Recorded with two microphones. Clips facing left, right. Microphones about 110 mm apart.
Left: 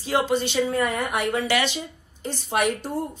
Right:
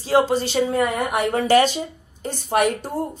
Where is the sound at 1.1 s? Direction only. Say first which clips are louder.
Right 8 dB; 40° right (ahead or behind).